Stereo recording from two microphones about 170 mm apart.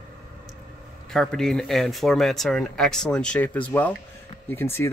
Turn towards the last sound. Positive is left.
turn(degrees=15)  # may be behind; listen again after turning